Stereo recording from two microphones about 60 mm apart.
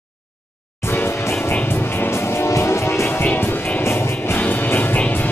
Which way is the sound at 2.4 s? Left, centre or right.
Left.